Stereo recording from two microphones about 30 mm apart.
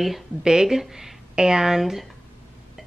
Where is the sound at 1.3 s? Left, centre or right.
Right.